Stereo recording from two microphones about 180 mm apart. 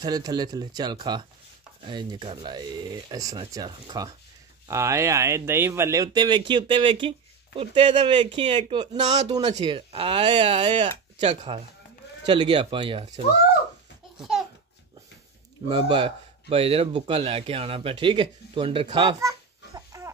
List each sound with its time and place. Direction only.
0.0 s speech: 25° right (ahead or behind)
15.7 s speech: 30° right (ahead or behind)
19.1 s babbling: 20° right (ahead or behind)